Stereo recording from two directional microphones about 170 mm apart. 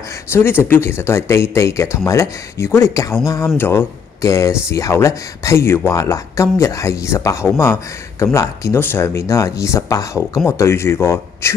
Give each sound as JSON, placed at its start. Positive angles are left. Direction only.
{"t": 0.3, "sound": "speech", "side_deg": 15}